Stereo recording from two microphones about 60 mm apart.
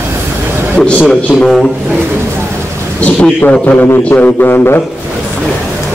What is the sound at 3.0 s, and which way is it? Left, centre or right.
Speech, left.